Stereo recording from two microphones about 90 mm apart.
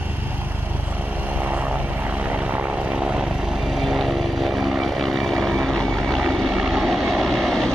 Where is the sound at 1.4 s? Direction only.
15° right (ahead or behind).